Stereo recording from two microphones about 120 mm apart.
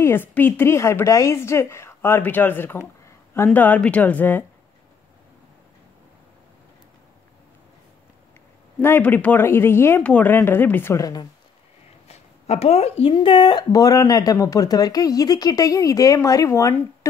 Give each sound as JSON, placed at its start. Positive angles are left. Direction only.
{"t": 0.0, "sound": "speech", "side_deg": 20}
{"t": 8.8, "sound": "speech", "side_deg": 15}
{"t": 12.1, "sound": "speech", "side_deg": 65}
{"t": 13.1, "sound": "speech", "side_deg": 45}
{"t": 13.7, "sound": "speech", "side_deg": 30}